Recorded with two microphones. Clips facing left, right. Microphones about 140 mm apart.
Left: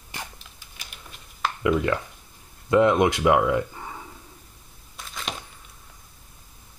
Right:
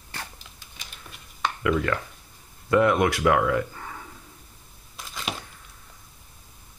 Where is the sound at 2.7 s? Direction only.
20° left (ahead or behind).